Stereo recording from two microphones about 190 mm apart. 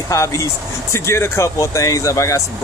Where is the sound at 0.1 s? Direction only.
15° left (ahead or behind).